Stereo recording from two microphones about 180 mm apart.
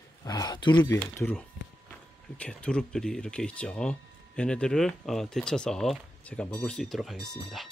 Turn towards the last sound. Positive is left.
turn(degrees=0)  # may be behind; listen again after turning